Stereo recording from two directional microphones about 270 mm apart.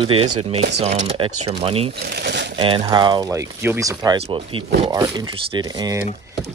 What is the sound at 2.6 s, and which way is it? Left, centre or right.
Speech, centre.